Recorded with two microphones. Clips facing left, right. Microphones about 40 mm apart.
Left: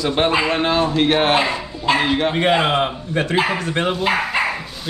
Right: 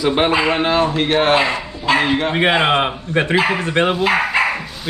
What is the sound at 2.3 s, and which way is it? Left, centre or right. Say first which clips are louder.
Speech: right 4 dB; right.